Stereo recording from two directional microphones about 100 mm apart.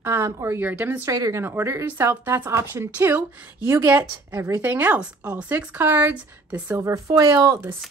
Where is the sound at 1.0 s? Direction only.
35° right (ahead or behind).